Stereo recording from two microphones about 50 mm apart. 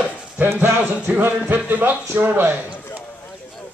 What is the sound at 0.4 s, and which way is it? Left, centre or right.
Speech, right.